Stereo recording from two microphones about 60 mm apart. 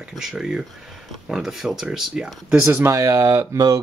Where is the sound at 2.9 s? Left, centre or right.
Right.